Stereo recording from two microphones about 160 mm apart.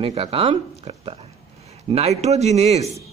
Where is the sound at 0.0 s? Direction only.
35° right (ahead or behind).